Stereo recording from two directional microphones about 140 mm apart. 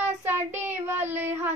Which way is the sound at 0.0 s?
15° right (ahead or behind).